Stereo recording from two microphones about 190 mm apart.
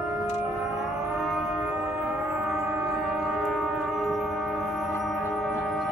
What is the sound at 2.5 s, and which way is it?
Music, centre (ahead or behind).